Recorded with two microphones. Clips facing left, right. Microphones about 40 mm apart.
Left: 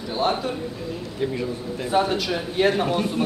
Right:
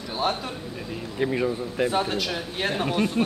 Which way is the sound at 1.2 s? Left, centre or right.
Right.